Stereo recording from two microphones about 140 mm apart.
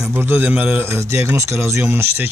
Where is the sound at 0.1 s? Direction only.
15° right (ahead or behind).